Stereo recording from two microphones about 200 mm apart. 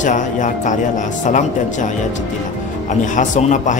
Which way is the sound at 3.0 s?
40° left (ahead or behind).